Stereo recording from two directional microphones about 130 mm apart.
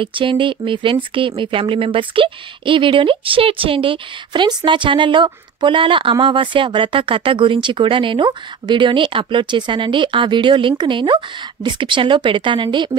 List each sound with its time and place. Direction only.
0.0 s speech: 40° right (ahead or behind)